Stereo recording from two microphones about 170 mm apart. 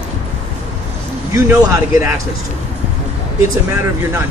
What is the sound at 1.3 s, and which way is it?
Speech, 15° right (ahead or behind).